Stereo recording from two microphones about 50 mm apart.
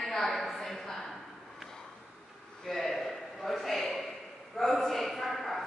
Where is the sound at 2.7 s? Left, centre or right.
Centre.